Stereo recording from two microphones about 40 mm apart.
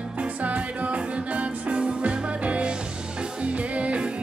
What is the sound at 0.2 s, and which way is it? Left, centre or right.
Music, right.